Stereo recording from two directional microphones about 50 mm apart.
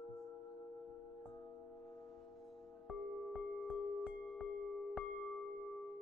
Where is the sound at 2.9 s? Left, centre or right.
Centre.